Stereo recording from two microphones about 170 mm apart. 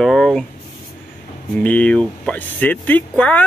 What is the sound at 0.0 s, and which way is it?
Speech, centre (ahead or behind).